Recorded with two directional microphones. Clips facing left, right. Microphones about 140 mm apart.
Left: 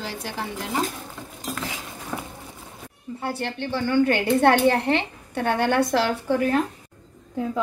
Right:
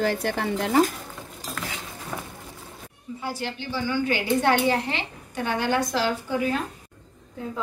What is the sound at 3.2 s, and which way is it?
A woman's voice, 60° left (ahead or behind).